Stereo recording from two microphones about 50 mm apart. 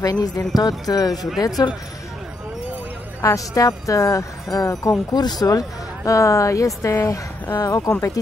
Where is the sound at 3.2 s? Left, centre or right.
Left.